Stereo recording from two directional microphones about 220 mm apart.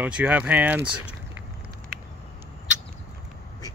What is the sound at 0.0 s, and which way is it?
Speech, 5° right (ahead or behind).